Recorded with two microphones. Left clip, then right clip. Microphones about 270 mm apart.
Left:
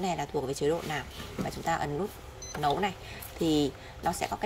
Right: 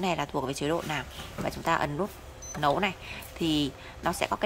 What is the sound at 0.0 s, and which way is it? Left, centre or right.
Speech, centre.